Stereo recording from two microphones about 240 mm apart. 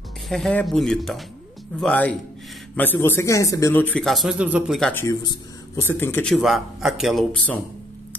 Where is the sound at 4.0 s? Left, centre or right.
Centre.